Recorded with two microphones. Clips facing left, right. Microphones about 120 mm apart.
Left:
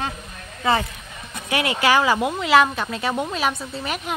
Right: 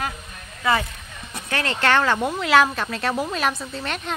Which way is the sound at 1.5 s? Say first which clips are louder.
Left 2 dB; 10° left (ahead or behind).